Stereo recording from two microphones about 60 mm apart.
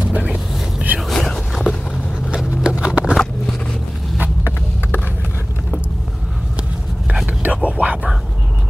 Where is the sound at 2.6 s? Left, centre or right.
Centre.